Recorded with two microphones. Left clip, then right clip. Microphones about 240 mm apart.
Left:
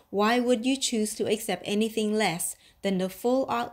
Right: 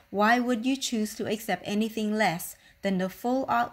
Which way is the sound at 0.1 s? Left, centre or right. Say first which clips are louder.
Even; right.